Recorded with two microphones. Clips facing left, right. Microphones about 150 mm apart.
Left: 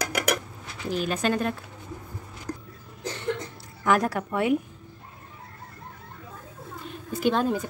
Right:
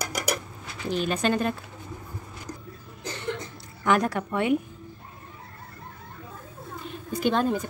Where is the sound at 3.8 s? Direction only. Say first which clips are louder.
Even; 5° left (ahead or behind).